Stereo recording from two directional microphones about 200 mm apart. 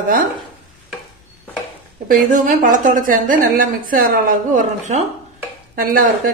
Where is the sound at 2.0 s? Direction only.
40° right (ahead or behind).